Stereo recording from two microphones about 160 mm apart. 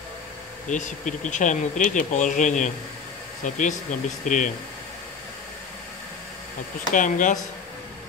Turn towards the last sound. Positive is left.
turn(degrees=55)  # may be behind; listen again after turning